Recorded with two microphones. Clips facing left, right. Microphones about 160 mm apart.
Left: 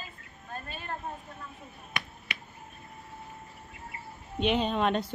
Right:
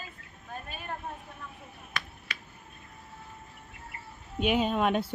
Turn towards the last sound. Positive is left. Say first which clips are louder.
# right 1 dB
turn(degrees=-5)  # may be behind; listen again after turning